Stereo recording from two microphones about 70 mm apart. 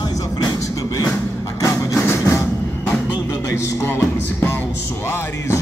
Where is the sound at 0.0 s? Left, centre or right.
Left.